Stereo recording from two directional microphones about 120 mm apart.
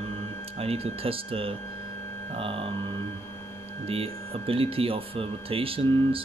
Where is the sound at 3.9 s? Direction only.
55° right (ahead or behind).